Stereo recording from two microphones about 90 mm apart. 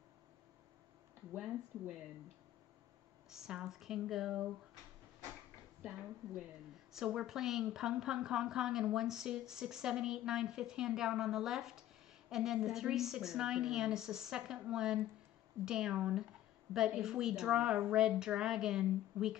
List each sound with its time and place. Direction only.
1.3 s speech: 5° right (ahead or behind)
3.3 s speech: 5° right (ahead or behind)
5.8 s a woman's voice: 10° right (ahead or behind)